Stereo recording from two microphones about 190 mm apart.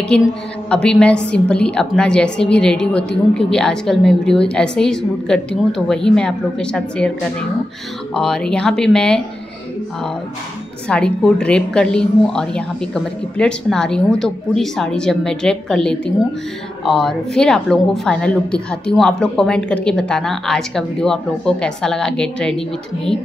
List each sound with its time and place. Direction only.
0.1 s a woman's voice: 5° left (ahead or behind)
8.1 s a woman's voice: 5° left (ahead or behind)
10.9 s a woman's voice: 5° left (ahead or behind)